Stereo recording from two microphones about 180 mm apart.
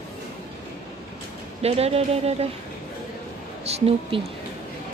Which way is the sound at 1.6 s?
35° right (ahead or behind).